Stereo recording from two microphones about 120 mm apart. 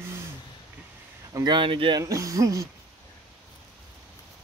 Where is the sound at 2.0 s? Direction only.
25° right (ahead or behind).